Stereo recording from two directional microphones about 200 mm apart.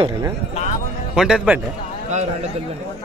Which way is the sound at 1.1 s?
5° right (ahead or behind).